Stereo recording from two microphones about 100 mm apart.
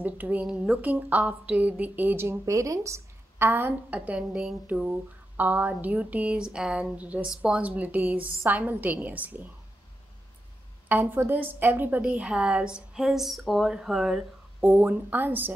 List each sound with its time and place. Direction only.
0.0 s a woman's voice: 15° right (ahead or behind)
10.9 s a woman's voice: 20° right (ahead or behind)
14.6 s a woman's voice: 15° right (ahead or behind)